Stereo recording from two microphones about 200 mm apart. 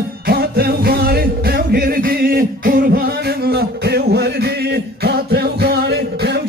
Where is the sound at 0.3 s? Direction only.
50° right (ahead or behind).